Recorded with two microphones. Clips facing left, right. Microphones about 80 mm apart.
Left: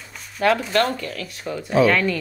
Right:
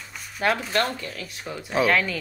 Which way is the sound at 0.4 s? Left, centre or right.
Centre.